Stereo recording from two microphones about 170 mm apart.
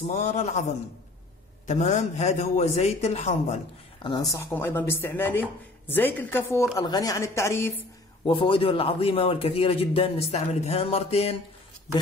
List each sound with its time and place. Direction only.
0.0 s a man's voice: 40° left (ahead or behind)
1.7 s a man's voice: 45° left (ahead or behind)
4.0 s speech: 20° left (ahead or behind)
8.3 s a man's voice: 30° left (ahead or behind)